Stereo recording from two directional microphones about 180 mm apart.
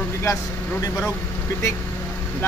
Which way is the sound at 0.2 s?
15° left (ahead or behind).